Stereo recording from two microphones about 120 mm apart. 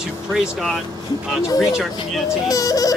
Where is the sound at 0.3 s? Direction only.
Centre (ahead or behind).